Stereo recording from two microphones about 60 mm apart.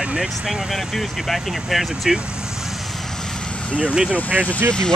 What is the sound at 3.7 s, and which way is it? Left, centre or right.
Speech, centre.